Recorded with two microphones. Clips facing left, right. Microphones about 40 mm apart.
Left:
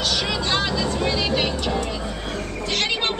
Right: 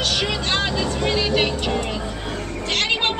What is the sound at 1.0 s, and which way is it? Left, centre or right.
Music, right.